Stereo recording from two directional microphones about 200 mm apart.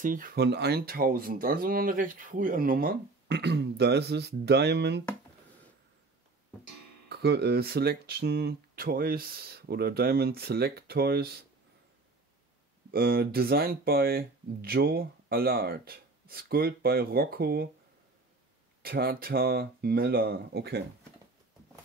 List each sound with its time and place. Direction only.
0.0 s speech: 45° right (ahead or behind)
7.1 s speech: 55° right (ahead or behind)
12.9 s speech: 50° right (ahead or behind)
18.8 s speech: 50° right (ahead or behind)